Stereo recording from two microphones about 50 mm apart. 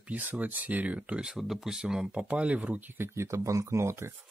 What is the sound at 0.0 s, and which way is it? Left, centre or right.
Speech, right.